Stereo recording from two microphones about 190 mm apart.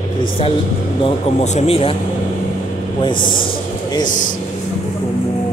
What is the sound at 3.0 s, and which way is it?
Speech, 25° left (ahead or behind).